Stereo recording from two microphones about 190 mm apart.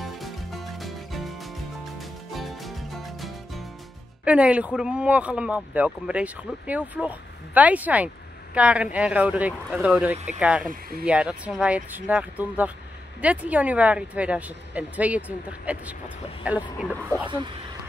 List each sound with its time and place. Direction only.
0.0 s music: centre (ahead or behind)
2.3 s music: centre (ahead or behind)
4.2 s speech: 5° right (ahead or behind)
10.7 s speech: 50° right (ahead or behind)
11.1 s speech: 5° right (ahead or behind)